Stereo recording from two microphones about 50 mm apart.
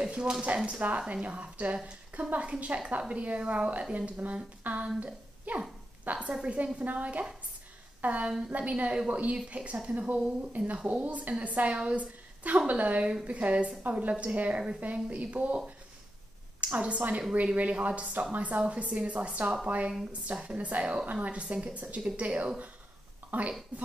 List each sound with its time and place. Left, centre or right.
0.0 s a woman's voice: centre
16.6 s a woman's voice: right